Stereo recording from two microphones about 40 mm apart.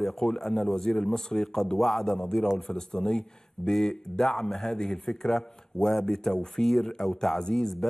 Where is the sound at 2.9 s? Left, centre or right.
Centre.